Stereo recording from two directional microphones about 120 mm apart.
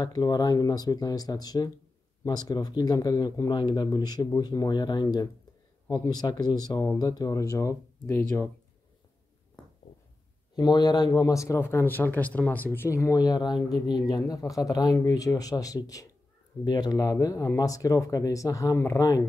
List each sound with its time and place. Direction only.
0.0 s speech: 35° left (ahead or behind)
9.6 s a sound: 10° left (ahead or behind)
10.5 s speech: 35° left (ahead or behind)